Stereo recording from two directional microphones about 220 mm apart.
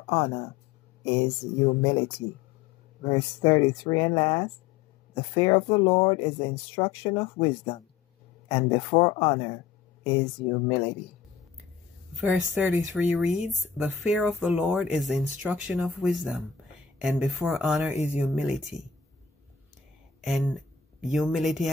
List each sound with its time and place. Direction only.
0.0 s speech: 25° left (ahead or behind)
3.1 s speech: 20° left (ahead or behind)
12.2 s speech: 5° right (ahead or behind)
20.2 s speech: centre (ahead or behind)